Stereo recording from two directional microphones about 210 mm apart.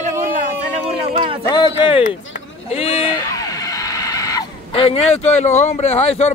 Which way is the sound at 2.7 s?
25° left (ahead or behind).